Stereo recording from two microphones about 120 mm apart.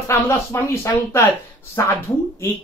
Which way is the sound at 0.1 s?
25° left (ahead or behind).